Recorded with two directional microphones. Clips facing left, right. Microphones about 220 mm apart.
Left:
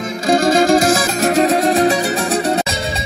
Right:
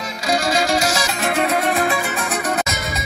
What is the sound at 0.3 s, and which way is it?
Music, 50° left (ahead or behind).